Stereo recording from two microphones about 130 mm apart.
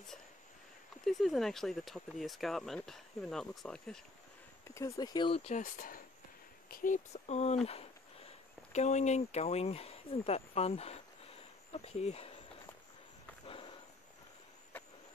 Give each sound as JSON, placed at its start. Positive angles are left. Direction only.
{"t": 1.0, "sound": "speech", "side_deg": 0}
{"t": 4.6, "sound": "speech", "side_deg": 25}
{"t": 5.3, "sound": "speech", "side_deg": 50}
{"t": 5.6, "sound": "speech", "side_deg": 90}
{"t": 6.8, "sound": "speech", "side_deg": 70}
{"t": 7.6, "sound": "a sound", "side_deg": 50}
{"t": 8.7, "sound": "speech", "side_deg": 60}
{"t": 13.5, "sound": "a sound", "side_deg": 45}